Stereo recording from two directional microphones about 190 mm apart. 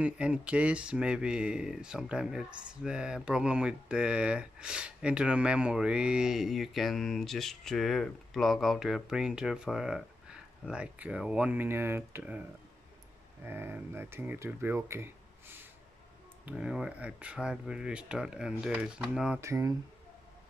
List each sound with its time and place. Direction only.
0.0 s speech: 5° right (ahead or behind)
19.4 s speech: 15° right (ahead or behind)